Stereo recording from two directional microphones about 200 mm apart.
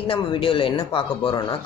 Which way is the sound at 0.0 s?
25° left (ahead or behind).